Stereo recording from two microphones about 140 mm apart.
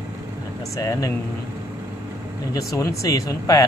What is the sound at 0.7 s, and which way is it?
Speech, 25° left (ahead or behind).